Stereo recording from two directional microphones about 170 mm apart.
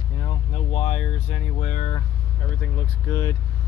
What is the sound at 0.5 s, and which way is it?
Speech, 40° left (ahead or behind).